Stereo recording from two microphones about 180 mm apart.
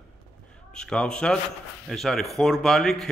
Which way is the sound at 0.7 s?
5° left (ahead or behind).